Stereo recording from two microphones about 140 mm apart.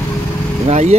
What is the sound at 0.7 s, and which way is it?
Speech, 55° right (ahead or behind).